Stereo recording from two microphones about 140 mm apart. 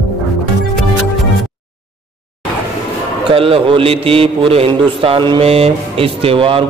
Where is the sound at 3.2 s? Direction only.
40° right (ahead or behind).